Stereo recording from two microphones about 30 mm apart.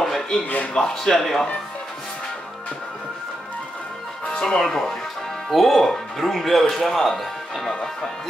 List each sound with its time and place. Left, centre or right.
0.0 s a sound: centre
0.8 s speech: centre
4.4 s speech: left
4.6 s speech: centre
5.5 s speech: centre